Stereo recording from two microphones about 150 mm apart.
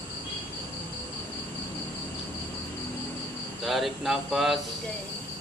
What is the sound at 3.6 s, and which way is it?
Speech, centre (ahead or behind).